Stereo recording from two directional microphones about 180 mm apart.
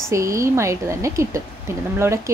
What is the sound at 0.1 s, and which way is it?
Speech, 15° right (ahead or behind).